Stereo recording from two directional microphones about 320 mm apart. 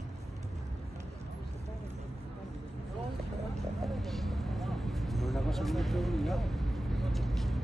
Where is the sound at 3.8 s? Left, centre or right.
Centre.